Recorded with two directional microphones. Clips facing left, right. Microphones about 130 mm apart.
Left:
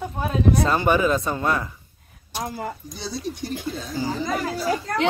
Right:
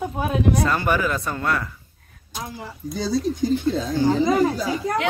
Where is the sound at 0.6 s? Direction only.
20° left (ahead or behind).